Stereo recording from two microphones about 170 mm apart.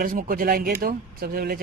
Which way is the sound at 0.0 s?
55° right (ahead or behind).